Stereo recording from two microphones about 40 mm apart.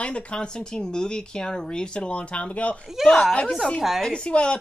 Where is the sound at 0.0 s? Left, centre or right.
Left.